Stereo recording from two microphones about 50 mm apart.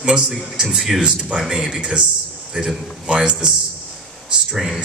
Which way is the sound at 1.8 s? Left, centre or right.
Centre.